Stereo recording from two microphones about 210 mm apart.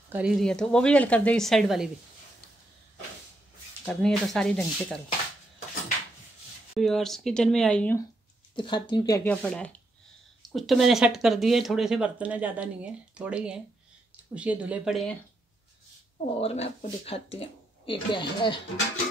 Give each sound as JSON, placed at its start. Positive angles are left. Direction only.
{"t": 0.1, "sound": "speech", "side_deg": -5}
{"t": 3.8, "sound": "speech", "side_deg": 5}
{"t": 6.7, "sound": "speech", "side_deg": 0}
{"t": 8.5, "sound": "speech", "side_deg": 25}
{"t": 16.3, "sound": "speech", "side_deg": 30}